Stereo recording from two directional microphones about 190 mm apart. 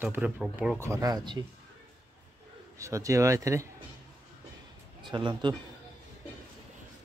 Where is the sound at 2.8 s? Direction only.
15° right (ahead or behind).